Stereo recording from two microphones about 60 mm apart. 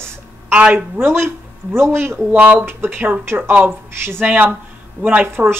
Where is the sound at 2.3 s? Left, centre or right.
Right.